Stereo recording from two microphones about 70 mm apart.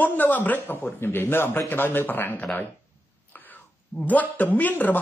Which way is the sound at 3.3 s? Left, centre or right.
Left.